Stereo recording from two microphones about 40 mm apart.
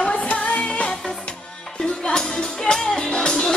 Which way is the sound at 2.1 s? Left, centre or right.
Left.